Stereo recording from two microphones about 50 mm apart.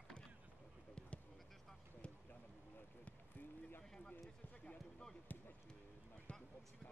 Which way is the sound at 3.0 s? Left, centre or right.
Left.